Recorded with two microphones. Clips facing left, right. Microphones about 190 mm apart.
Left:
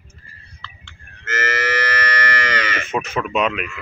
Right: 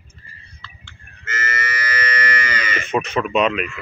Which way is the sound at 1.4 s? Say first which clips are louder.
Left 6 dB; 90° left.